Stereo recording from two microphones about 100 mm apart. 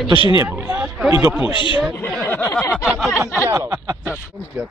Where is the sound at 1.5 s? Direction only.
55° left (ahead or behind).